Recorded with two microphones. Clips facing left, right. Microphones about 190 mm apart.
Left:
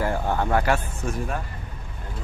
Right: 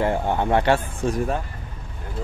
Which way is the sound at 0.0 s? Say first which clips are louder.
Right 3 dB; 20° right (ahead or behind).